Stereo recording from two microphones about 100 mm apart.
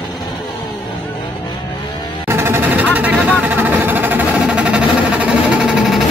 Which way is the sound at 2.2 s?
25° right (ahead or behind).